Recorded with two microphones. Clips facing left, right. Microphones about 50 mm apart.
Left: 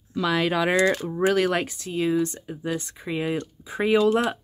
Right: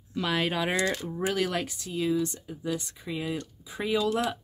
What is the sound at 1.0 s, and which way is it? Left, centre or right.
Speech, left.